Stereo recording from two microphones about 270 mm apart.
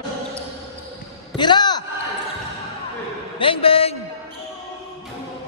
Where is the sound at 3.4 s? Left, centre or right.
Centre.